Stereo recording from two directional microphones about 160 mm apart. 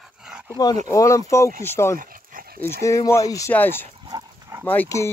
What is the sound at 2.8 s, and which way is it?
Speech, 20° left (ahead or behind).